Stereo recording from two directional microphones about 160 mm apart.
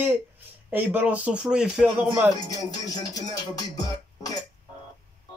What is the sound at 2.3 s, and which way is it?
Music, 25° left (ahead or behind).